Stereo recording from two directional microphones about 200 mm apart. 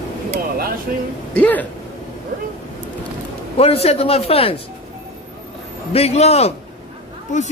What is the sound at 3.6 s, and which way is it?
A man's voice, 30° left (ahead or behind).